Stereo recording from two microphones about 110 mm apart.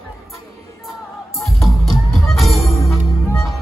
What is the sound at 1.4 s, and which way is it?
Music, centre (ahead or behind).